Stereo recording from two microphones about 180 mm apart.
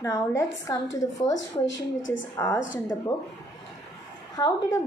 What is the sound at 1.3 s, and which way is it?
Speech, 90° left.